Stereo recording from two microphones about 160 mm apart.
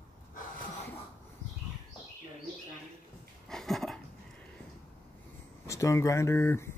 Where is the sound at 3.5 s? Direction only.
Centre (ahead or behind).